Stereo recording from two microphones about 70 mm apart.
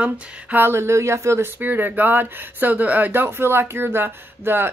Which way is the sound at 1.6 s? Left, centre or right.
Right.